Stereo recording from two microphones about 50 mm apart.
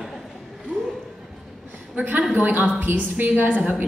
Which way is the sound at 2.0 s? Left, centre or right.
Right.